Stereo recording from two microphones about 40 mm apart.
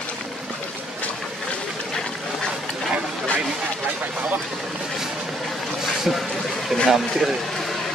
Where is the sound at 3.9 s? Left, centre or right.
Right.